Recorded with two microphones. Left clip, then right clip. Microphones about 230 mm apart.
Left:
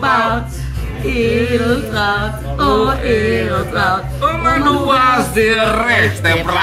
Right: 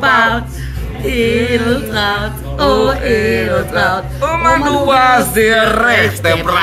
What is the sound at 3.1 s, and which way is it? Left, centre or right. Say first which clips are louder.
Speech: right 2 dB; centre.